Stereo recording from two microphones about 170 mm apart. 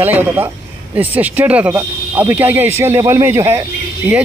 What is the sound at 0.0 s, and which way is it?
A man's voice, 10° right (ahead or behind).